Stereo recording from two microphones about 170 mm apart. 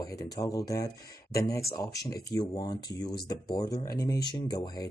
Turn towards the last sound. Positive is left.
turn(degrees=25)  # may be behind; listen again after turning